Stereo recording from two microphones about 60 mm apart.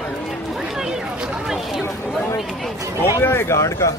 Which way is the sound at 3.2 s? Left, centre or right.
Left.